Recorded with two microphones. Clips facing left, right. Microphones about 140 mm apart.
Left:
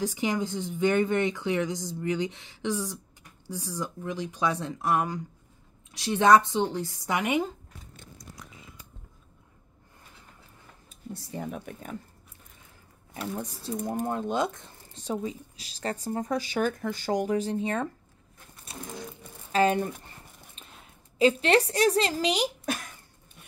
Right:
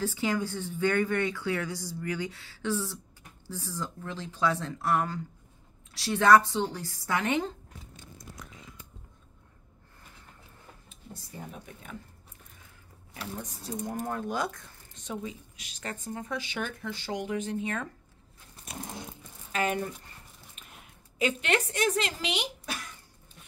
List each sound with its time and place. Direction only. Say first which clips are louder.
0.0 s speech: left 1 dB; 15° left (ahead or behind)
11.3 s speech: left 8 dB; 65° left (ahead or behind)
13.3 s speech: left 4 dB; 35° left (ahead or behind)
18.7 s a sound: right 2 dB; 30° left (ahead or behind)
19.5 s speech: left 6 dB; 30° left (ahead or behind)
20.6 s a sound: left 2 dB; 30° left (ahead or behind)
21.2 s speech: left 7 dB; 35° left (ahead or behind)